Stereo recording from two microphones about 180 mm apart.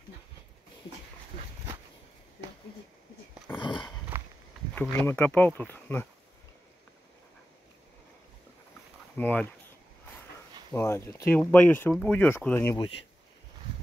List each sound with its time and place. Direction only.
3.5 s a sound: 25° left (ahead or behind)
4.1 s walk: 10° right (ahead or behind)
4.7 s speech: 10° left (ahead or behind)
9.1 s speech: 10° left (ahead or behind)
10.7 s speech: 15° left (ahead or behind)
12.7 s speech: 30° left (ahead or behind)